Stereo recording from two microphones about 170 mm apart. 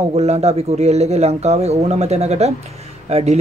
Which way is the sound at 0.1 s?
40° right (ahead or behind).